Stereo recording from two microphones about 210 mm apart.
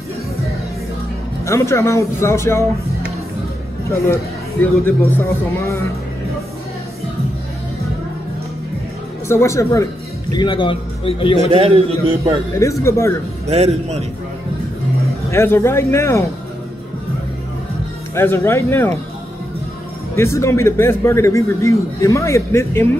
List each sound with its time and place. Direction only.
1.4 s a man's voice: 15° left (ahead or behind)
4.1 s a man's voice: 10° left (ahead or behind)
9.3 s a man's voice: 15° left (ahead or behind)
11.5 s a man's voice: 25° right (ahead or behind)
12.5 s a man's voice: 15° left (ahead or behind)
13.5 s a man's voice: 30° right (ahead or behind)
15.3 s a man's voice: 10° left (ahead or behind)
18.1 s a man's voice: 10° left (ahead or behind)
20.2 s a man's voice: 15° left (ahead or behind)